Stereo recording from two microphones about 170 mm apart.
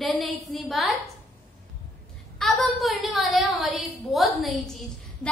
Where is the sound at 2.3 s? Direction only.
Centre (ahead or behind).